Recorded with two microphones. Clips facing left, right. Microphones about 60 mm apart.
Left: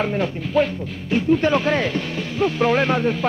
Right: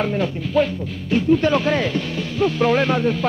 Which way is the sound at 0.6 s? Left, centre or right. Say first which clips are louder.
Even; left.